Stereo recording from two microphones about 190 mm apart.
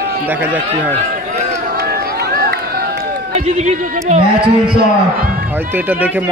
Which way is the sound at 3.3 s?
35° right (ahead or behind).